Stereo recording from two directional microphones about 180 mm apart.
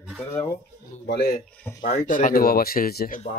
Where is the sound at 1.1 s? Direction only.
65° left (ahead or behind).